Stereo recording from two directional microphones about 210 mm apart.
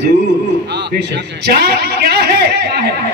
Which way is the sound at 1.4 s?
50° right (ahead or behind).